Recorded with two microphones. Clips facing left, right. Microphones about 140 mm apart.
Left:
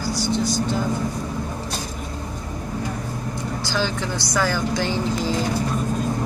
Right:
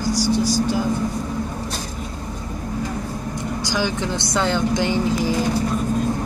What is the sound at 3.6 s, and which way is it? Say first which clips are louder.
Speech: right 2 dB; 15° right (ahead or behind).